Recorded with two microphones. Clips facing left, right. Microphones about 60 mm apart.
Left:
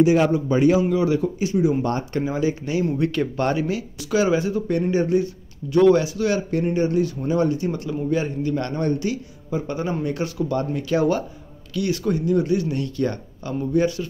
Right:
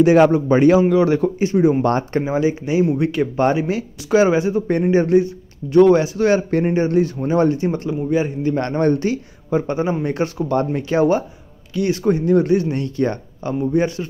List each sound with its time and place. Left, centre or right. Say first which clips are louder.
0.0 s a man's voice: right 5 dB; right
2.2 s speech: right 4 dB; right
7.9 s a man's voice: right 2 dB; centre
8.5 s speech: right 5 dB; right
9.8 s speech: right 5 dB; right
10.0 s speech: right 3 dB; right
12.3 s speech: right 4 dB; right